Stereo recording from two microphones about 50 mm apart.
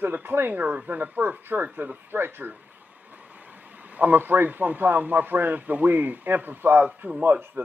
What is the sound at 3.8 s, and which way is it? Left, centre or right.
A man's voice, right.